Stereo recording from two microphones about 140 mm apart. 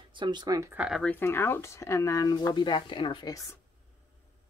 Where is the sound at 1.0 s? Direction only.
15° left (ahead or behind); by 3.4 s 30° left (ahead or behind).